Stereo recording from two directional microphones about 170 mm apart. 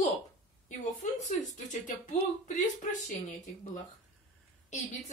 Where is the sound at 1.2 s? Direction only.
45° left (ahead or behind).